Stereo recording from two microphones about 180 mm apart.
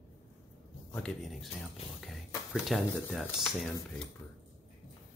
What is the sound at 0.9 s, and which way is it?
Speech, 5° left (ahead or behind).